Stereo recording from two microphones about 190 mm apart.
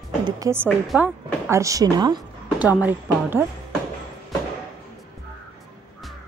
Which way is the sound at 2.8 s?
10° right (ahead or behind).